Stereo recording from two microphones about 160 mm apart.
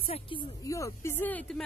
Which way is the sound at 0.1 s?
30° left (ahead or behind).